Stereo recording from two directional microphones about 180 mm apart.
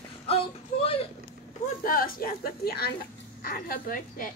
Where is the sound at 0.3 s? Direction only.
30° left (ahead or behind).